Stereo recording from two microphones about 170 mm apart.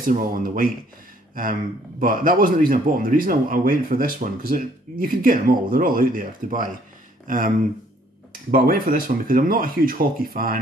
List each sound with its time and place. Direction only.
0.0 s a man's voice: 55° right (ahead or behind)